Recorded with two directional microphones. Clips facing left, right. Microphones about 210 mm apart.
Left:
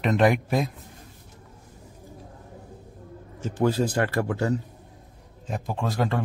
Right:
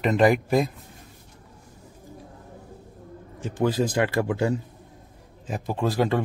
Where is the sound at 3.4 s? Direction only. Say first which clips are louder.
Even; 15° right (ahead or behind).